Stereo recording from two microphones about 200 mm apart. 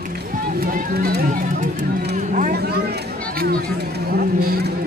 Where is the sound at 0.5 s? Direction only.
45° right (ahead or behind).